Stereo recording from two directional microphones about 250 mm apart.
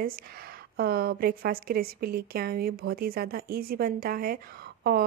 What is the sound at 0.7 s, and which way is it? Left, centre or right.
Speech, right.